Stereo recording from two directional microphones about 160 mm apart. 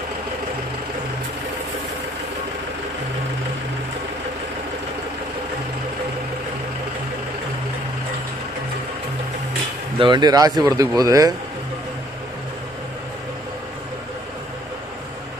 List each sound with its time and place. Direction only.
9.9 s speech: 30° right (ahead or behind)